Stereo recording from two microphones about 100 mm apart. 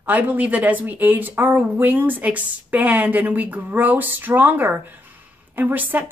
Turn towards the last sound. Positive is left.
turn(degrees=-20)  # may be behind; listen again after turning